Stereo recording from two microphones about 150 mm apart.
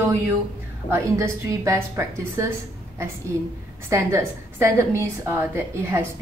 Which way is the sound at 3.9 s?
20° right (ahead or behind).